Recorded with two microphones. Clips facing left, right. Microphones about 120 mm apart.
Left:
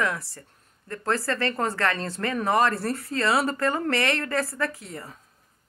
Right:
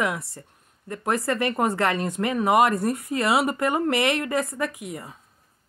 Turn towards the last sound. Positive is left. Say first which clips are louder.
# right 1 dB
turn(degrees=-15)  # may be behind; listen again after turning